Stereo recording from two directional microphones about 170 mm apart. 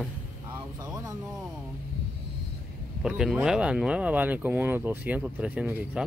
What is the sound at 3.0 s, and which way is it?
Speech, 5° right (ahead or behind).